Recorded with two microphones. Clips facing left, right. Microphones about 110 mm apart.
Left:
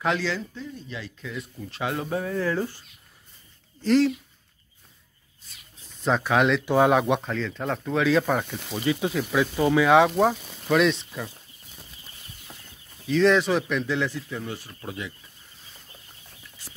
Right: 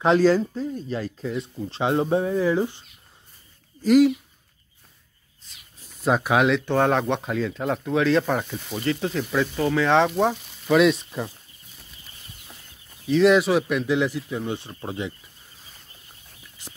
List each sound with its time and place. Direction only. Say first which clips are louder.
0.2 s speech: right 11 dB; 40° right (ahead or behind); by 2.8 s 15° right (ahead or behind)
3.8 s speech: right 4 dB; 10° right (ahead or behind)
6.0 s speech: right 2 dB; 10° right (ahead or behind)
6.6 s speech: left 1 dB; 10° left (ahead or behind)
7.2 s speech: right 3 dB; 10° right (ahead or behind)
8.7 s speech: even; 10° left (ahead or behind); by 11.2 s 15° right (ahead or behind)
13.1 s speech: right 3 dB; 5° right (ahead or behind); by 15.1 s 25° right (ahead or behind)
16.6 s whispering: right 4 dB; 20° right (ahead or behind)